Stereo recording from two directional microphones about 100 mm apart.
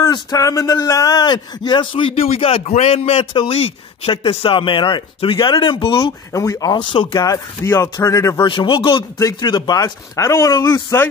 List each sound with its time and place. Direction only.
0.0 s speech: 40° left (ahead or behind); by 3.3 s 80° left
3.3 s speech: 70° left (ahead or behind)
6.3 s speech: 35° left (ahead or behind)
6.8 s speech: 55° left (ahead or behind)
7.6 s speech: 30° left (ahead or behind)
8.4 s speech: 55° left (ahead or behind); by 11.1 s 25° left (ahead or behind)